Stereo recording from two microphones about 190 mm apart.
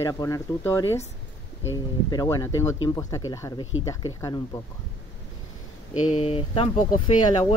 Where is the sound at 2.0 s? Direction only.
20° left (ahead or behind).